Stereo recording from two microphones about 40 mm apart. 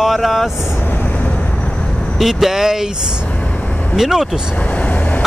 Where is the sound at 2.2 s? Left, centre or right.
Centre.